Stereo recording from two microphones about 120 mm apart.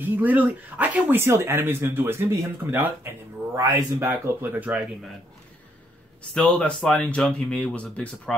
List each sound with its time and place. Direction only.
0.0 s speech: 15° right (ahead or behind)
6.3 s speech: 10° left (ahead or behind)